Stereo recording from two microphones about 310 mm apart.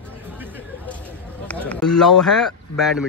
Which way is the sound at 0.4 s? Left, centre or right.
Centre.